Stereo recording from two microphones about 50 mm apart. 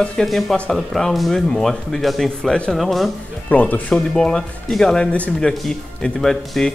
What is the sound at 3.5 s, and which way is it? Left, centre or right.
Speech, left.